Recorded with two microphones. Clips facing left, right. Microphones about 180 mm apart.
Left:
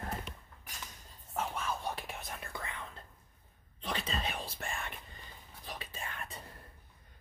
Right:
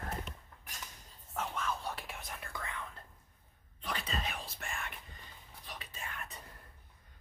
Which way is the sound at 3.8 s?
25° left (ahead or behind).